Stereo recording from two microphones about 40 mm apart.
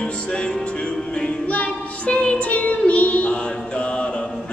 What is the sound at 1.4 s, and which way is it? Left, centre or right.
Child singing, left.